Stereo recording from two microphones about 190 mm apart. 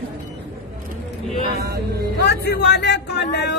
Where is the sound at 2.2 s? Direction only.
60° left (ahead or behind).